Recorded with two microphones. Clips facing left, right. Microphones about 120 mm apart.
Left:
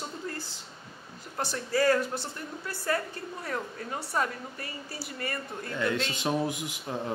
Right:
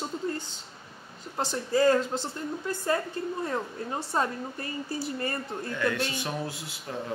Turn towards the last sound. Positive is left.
turn(degrees=20)  # may be behind; listen again after turning